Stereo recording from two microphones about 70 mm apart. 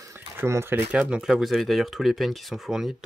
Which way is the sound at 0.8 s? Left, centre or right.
Centre.